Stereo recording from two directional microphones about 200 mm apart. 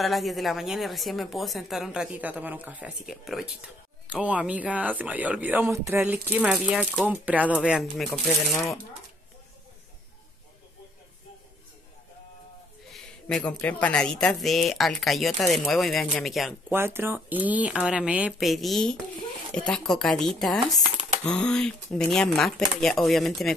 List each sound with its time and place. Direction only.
0.0 s speech: centre (ahead or behind)
12.9 s speech: 5° left (ahead or behind)
16.7 s speech: 10° right (ahead or behind)
20.6 s speech: 30° right (ahead or behind)
21.2 s speech: 5° left (ahead or behind)